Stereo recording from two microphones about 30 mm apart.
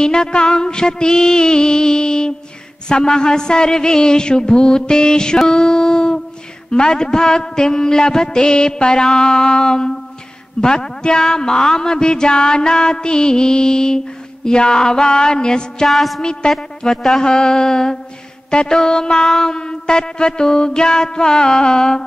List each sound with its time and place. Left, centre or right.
0.0 s speech: left
15.9 s a sound: centre
16.2 s speech: left
16.5 s speech: centre
17.2 s speech: left